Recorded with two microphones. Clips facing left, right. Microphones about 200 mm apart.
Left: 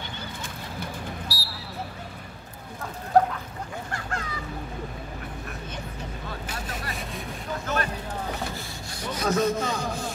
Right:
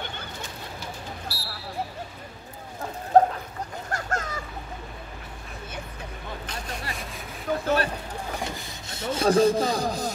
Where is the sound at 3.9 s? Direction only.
45° right (ahead or behind).